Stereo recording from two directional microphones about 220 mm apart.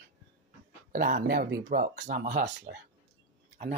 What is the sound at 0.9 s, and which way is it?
Speech, 40° right (ahead or behind).